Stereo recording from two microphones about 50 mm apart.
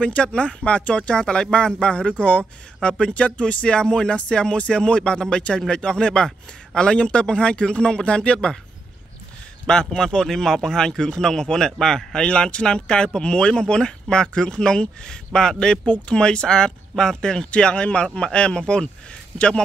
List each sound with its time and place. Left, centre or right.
0.0 s a man's voice: left
9.7 s a man's voice: centre